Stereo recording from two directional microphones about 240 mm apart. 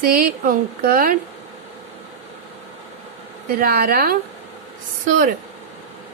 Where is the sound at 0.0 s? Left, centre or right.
Right.